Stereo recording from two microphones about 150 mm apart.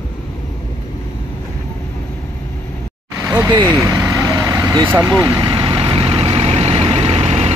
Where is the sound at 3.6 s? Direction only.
20° right (ahead or behind).